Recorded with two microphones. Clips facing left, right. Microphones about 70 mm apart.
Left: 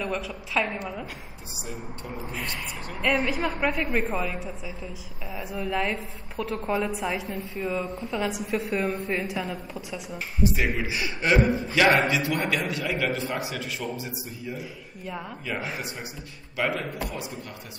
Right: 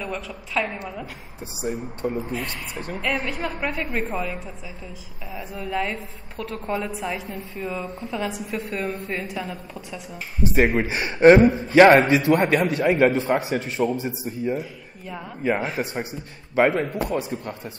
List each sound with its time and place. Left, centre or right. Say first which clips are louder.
0.0 s a woman's voice: left 1 dB; centre
1.6 s a man's voice: right 11 dB; right
2.1 s a woman's voice: right 5 dB; centre
5.7 s a woman's voice: right 2 dB; centre
10.4 s a man's voice: right 6 dB; right
11.3 s a man's voice: right 6 dB; right
11.7 s a man's voice: right 9 dB; right
14.6 s speech: right 3 dB; centre
15.8 s a man's voice: right 8 dB; right